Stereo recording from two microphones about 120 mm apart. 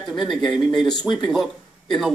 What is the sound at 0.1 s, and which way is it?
Speech, centre (ahead or behind).